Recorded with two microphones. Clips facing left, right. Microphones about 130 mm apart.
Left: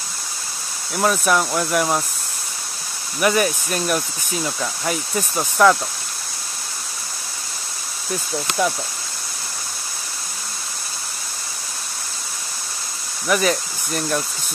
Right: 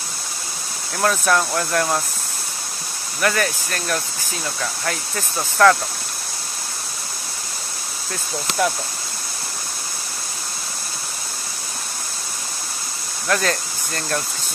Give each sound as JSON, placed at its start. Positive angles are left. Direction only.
{"t": 0.9, "sound": "speech", "side_deg": 5}
{"t": 3.2, "sound": "speech", "side_deg": 15}
{"t": 13.3, "sound": "speech", "side_deg": 10}